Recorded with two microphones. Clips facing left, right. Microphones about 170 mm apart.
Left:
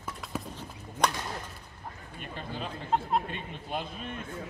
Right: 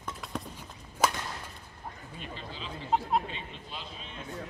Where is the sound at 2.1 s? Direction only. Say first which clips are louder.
Left 5 dB; 55° left (ahead or behind).